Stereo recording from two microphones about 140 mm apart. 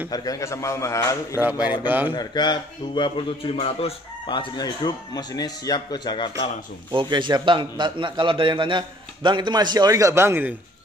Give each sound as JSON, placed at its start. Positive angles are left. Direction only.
{"t": 0.1, "sound": "a man's voice", "side_deg": 25}
{"t": 1.3, "sound": "speech", "side_deg": -10}
{"t": 2.1, "sound": "speech", "side_deg": 30}
{"t": 3.5, "sound": "speech", "side_deg": 45}
{"t": 6.9, "sound": "a man's voice", "side_deg": -35}